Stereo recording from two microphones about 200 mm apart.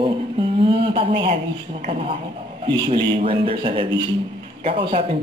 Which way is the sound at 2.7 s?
25° right (ahead or behind).